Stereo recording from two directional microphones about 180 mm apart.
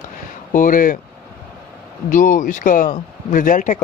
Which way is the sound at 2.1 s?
45° left (ahead or behind).